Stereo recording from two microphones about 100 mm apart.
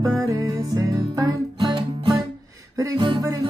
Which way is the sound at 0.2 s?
35° right (ahead or behind).